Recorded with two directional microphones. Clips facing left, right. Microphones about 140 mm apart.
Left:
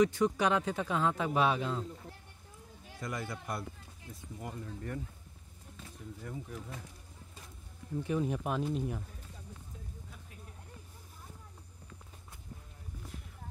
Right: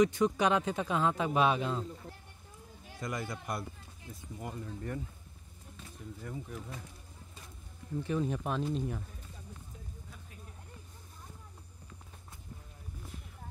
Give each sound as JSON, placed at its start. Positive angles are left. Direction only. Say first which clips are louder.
{"t": 0.0, "sound": "speech", "louder": "right 1 dB", "side_deg": -20}
{"t": 3.0, "sound": "speech", "louder": "right 1 dB", "side_deg": -15}
{"t": 6.2, "sound": "speech", "louder": "right 1 dB", "side_deg": 0}
{"t": 8.0, "sound": "speech", "louder": "even", "side_deg": 15}